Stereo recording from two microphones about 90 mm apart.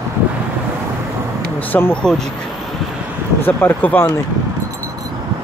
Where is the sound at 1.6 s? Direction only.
20° left (ahead or behind).